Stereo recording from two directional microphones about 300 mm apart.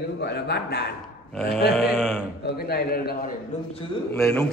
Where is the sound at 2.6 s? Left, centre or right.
Left.